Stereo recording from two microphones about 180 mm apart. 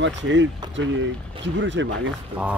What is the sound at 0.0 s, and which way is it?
Speech, 90° right.